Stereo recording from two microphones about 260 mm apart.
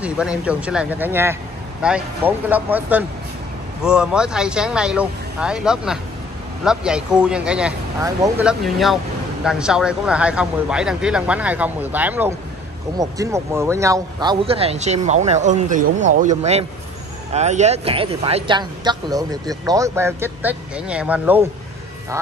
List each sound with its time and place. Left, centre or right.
0.0 s a man's voice: centre